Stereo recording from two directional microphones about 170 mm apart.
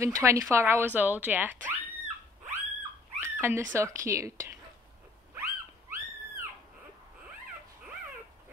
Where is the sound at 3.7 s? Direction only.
15° right (ahead or behind).